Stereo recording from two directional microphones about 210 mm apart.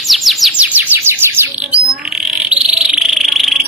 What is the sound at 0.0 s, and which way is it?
Bird, centre (ahead or behind).